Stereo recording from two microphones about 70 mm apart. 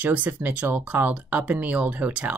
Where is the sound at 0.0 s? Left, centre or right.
Right.